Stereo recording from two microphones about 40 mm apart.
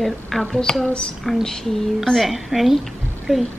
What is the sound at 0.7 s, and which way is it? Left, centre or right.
A woman's voice, centre.